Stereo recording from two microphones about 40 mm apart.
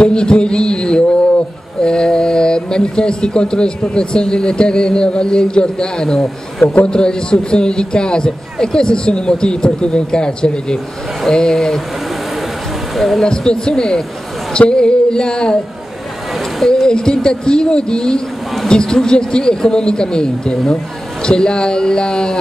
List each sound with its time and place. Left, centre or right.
0.0 s a sound: left
1.8 s speech: centre
12.9 s speech: centre
13.2 s speech: centre
16.8 s speech: centre